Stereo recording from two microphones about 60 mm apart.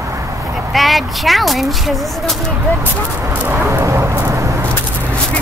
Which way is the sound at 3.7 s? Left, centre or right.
Right.